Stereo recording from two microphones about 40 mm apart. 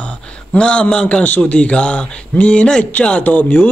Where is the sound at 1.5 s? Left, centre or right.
Left.